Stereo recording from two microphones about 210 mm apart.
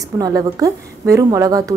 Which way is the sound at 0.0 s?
15° right (ahead or behind).